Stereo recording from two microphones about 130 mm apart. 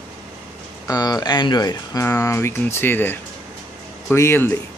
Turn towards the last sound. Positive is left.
turn(degrees=15)  # may be behind; listen again after turning